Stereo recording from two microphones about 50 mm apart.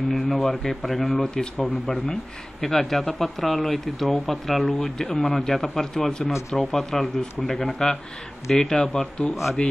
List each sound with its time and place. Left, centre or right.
0.1 s speech: centre